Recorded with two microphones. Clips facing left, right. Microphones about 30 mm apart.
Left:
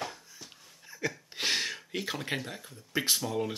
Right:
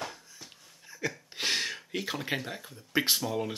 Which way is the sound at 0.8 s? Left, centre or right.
Centre.